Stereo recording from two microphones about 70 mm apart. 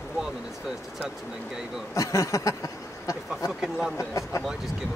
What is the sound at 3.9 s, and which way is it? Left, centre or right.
Speech, left.